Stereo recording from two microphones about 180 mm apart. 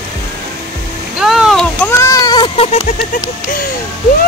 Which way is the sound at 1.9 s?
15° left (ahead or behind).